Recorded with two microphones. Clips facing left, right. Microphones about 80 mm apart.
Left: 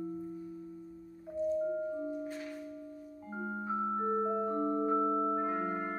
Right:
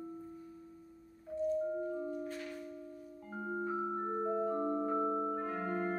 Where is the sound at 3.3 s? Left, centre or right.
Centre.